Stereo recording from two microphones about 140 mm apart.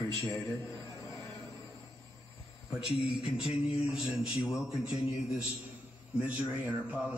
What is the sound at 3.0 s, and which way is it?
A man's voice, 5° right (ahead or behind).